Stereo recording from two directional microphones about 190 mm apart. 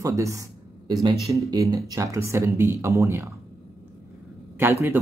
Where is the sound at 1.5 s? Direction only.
20° right (ahead or behind).